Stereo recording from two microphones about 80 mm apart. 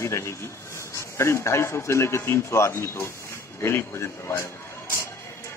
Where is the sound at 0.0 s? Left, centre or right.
Left.